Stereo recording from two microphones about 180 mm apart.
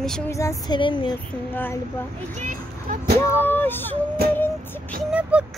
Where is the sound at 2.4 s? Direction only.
50° right (ahead or behind).